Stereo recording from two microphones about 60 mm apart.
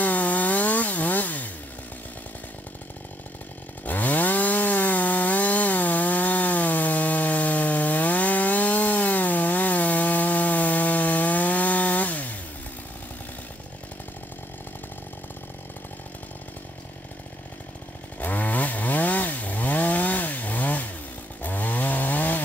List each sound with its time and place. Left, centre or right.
0.0 s chainsaw: left
3.8 s chainsaw: left
18.2 s chainsaw: left